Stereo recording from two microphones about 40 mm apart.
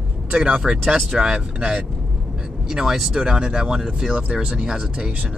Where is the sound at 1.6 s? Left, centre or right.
Right.